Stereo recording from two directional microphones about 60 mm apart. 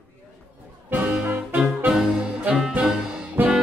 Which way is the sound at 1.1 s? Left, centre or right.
Right.